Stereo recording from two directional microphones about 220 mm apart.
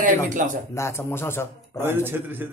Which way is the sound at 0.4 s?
35° right (ahead or behind).